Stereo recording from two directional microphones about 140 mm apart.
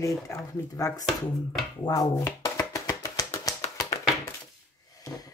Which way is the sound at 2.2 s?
25° left (ahead or behind).